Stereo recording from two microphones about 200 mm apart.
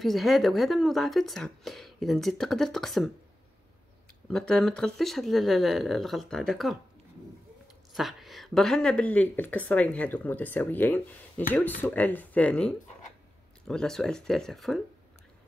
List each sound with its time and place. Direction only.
0.0 s speech: centre (ahead or behind)
4.3 s speech: centre (ahead or behind)
7.9 s a woman's voice: centre (ahead or behind)